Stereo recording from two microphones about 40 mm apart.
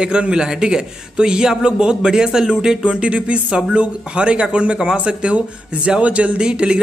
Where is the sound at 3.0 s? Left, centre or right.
Right.